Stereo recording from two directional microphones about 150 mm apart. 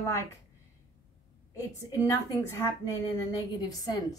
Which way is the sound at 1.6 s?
25° left (ahead or behind).